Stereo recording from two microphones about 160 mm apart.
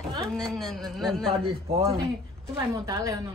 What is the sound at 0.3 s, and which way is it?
A woman's voice, centre (ahead or behind).